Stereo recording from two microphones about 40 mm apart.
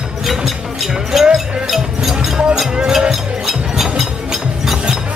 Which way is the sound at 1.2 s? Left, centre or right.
Right.